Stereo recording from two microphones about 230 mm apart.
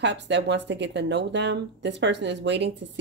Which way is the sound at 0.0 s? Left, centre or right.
Right.